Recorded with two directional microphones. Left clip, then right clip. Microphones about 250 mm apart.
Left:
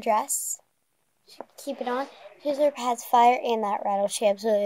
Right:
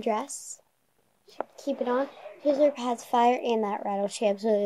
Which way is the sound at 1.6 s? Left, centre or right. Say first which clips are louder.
Right 1 dB; left.